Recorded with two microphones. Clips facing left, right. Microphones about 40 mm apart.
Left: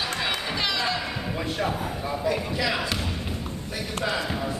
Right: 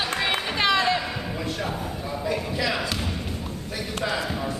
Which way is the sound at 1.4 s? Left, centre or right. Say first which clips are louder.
Left 3 dB; centre.